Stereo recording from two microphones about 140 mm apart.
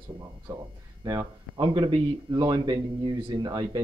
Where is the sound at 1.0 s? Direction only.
30° right (ahead or behind).